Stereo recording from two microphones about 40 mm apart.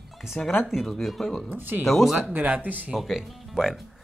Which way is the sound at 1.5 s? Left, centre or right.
Right.